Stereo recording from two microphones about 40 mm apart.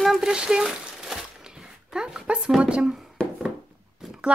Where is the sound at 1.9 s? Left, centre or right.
Right.